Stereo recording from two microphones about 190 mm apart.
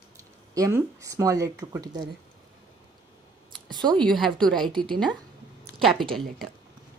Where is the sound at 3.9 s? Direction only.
5° left (ahead or behind).